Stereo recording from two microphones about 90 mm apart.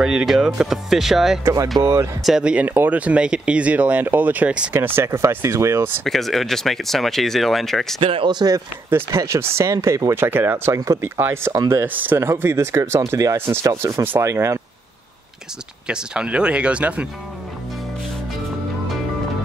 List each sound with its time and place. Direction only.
0.0 s speech: 5° right (ahead or behind)
1.4 s speech: 35° right (ahead or behind)
2.2 s speech: 10° right (ahead or behind); by 5.9 s 30° right (ahead or behind)
6.0 s speech: centre (ahead or behind)
8.0 s speech: 80° right
8.3 s speech: 50° right (ahead or behind)
9.1 s speech: 35° right (ahead or behind)
10.1 s speech: 25° right (ahead or behind)
11.5 s speech: 40° right (ahead or behind)
11.8 s speech: 20° right (ahead or behind)
15.9 s speech: 10° right (ahead or behind)